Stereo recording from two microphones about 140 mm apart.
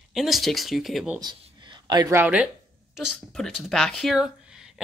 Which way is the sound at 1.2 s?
30° right (ahead or behind).